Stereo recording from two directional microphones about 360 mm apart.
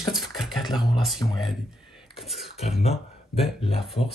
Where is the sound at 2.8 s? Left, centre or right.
Centre.